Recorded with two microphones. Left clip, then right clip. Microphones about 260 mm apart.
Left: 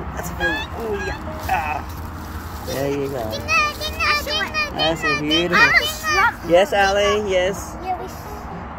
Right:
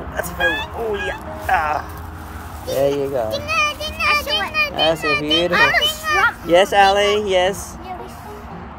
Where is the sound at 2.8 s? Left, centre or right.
Right.